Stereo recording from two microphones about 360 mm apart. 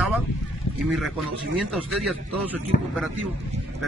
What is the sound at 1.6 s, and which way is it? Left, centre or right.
Speech, centre.